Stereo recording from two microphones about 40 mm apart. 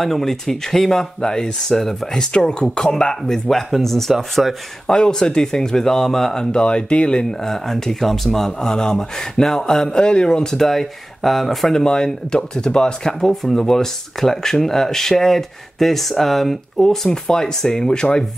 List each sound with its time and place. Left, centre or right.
0.0 s speech: centre
4.8 s speech: centre
7.4 s speech: centre
9.8 s speech: left; by 11.7 s centre
11.7 s speech: centre
13.3 s speech: centre